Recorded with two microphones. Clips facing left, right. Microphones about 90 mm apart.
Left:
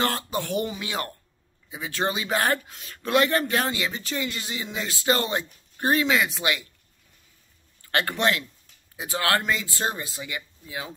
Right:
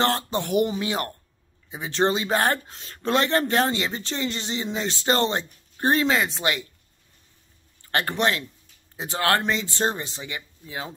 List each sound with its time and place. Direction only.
0.0 s speech: 30° right (ahead or behind)
7.8 s speech: 25° right (ahead or behind)